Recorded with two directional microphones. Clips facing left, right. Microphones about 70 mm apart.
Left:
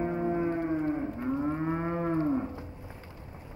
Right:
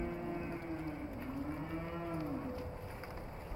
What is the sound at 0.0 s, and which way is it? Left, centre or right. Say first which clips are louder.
Moo: left 11 dB; left.